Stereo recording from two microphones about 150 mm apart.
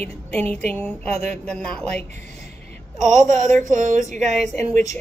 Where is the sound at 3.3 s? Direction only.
55° right (ahead or behind).